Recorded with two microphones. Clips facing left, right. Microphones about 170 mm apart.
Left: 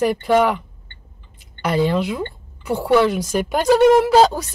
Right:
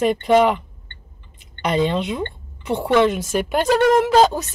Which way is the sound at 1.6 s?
20° right (ahead or behind).